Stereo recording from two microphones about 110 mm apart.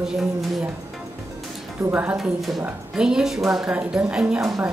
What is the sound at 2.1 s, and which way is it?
A woman's voice, centre (ahead or behind).